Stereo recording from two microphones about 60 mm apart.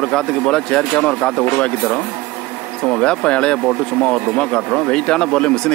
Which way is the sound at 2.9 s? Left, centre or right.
Centre.